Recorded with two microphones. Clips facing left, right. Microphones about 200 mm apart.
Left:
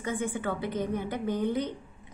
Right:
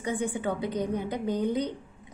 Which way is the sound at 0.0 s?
15° right (ahead or behind).